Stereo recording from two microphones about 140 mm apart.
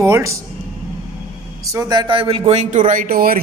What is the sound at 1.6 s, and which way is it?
Speech, 25° right (ahead or behind).